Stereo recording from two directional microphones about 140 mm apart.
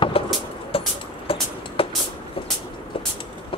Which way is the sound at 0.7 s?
40° left (ahead or behind).